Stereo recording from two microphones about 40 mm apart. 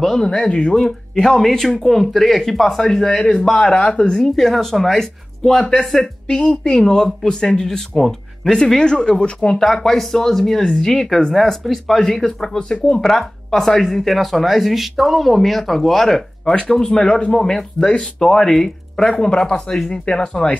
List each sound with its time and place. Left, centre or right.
0.0 s speech: centre
0.5 s speech: left; by 6.0 s centre
6.4 s speech: left
9.6 s speech: centre
17.7 s speech: left